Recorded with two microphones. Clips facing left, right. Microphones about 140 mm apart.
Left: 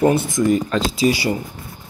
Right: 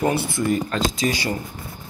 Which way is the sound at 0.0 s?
20° left (ahead or behind).